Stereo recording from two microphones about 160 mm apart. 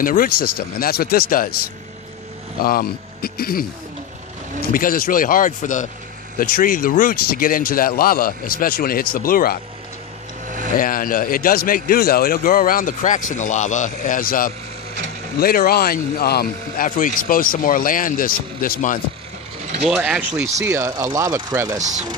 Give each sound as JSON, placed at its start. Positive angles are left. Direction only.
{"t": 0.0, "sound": "speech", "side_deg": 60}
{"t": 2.6, "sound": "speech", "side_deg": 70}
{"t": 4.7, "sound": "a man's voice", "side_deg": 60}
{"t": 6.3, "sound": "a man's voice", "side_deg": 65}
{"t": 10.4, "sound": "vehicle", "side_deg": -55}
{"t": 10.8, "sound": "a man's voice", "side_deg": 60}
{"t": 19.8, "sound": "speech", "side_deg": -5}
{"t": 21.7, "sound": "speech", "side_deg": -50}